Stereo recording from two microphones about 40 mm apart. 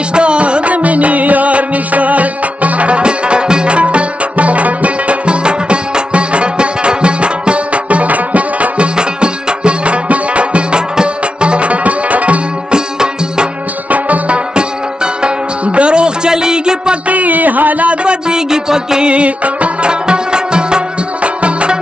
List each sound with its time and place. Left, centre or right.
0.1 s music: right
8.9 s music: right
12.7 s music: centre
13.8 s music: right
17.1 s a sound: right
18.0 s music: centre
19.0 s music of bollywood: right
19.9 s music: right